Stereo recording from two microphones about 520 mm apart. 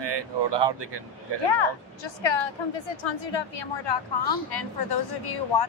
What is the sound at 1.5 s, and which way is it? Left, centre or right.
A woman's voice, left.